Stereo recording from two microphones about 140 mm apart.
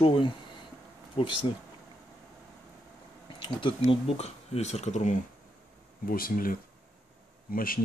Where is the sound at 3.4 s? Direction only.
40° left (ahead or behind); by 5.1 s 60° left (ahead or behind).